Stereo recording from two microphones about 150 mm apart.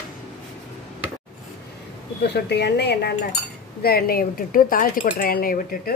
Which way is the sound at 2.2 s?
90° left.